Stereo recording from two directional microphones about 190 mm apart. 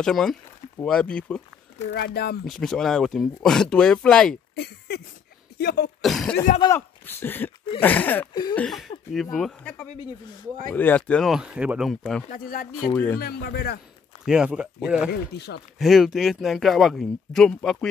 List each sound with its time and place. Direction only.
0.0 s speech: centre (ahead or behind)
2.0 s speech: 55° left (ahead or behind)
2.4 s speech: centre (ahead or behind)
4.6 s a sound: 60° left (ahead or behind)
5.6 s speech: 60° left (ahead or behind)
6.0 s speech: 5° left (ahead or behind)
12.3 s speech: 50° left (ahead or behind)
12.9 s speech: 10° left (ahead or behind)
13.2 s speech: 55° left (ahead or behind)
14.2 s speech: 5° right (ahead or behind)
15.0 s speech: 60° left (ahead or behind)
15.8 s speech: centre (ahead or behind)